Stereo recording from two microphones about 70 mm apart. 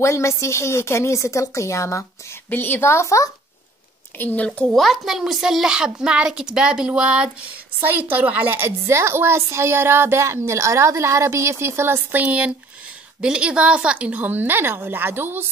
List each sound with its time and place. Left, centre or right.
0.0 s a woman's voice: left
2.5 s a woman's voice: left
4.2 s speech: left
4.7 s a woman's voice: centre
7.8 s a woman's voice: right